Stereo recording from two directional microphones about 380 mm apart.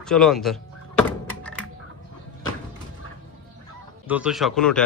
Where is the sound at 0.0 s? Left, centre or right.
Centre.